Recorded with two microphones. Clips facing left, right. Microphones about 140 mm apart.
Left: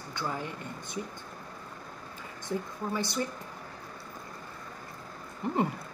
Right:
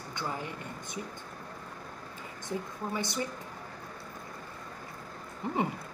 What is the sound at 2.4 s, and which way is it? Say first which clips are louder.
Speech: left 2 dB; 20° right (ahead or behind).